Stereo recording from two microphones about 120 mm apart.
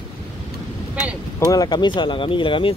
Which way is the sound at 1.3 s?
35° left (ahead or behind).